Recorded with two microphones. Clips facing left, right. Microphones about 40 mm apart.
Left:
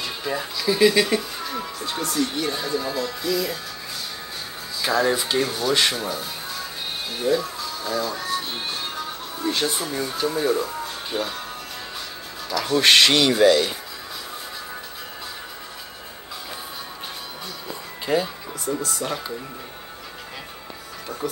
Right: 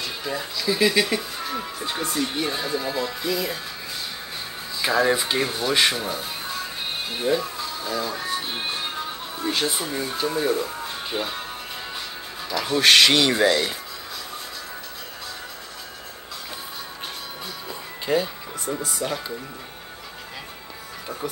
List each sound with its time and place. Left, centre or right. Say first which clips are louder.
0.0 s speech: left 2 dB; centre
4.8 s speech: right 1 dB; centre
12.5 s speech: left 2 dB; centre
12.8 s speech: even; centre
18.0 s speech: even; centre